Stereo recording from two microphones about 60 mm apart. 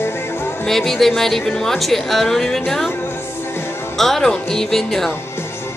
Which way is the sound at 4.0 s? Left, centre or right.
Centre.